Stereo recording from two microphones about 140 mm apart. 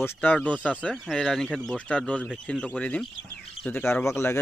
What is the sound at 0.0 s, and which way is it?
Speech, 15° left (ahead or behind).